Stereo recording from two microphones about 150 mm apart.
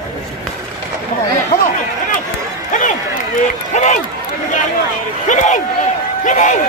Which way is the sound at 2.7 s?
60° left (ahead or behind).